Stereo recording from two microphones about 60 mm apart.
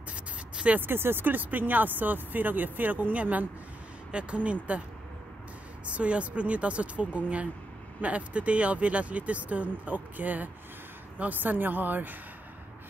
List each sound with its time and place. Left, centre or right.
0.1 s a sound: right
0.7 s speech: right
5.9 s speech: right